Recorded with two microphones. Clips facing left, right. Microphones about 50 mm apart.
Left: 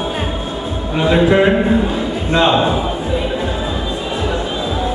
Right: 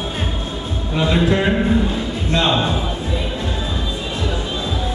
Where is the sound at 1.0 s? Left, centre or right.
Centre.